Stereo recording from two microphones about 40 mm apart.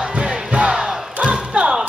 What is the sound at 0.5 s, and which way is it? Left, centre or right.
Crowd, right.